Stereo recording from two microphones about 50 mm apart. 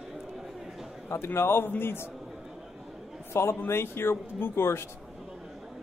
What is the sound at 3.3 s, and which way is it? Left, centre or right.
A man's voice, left.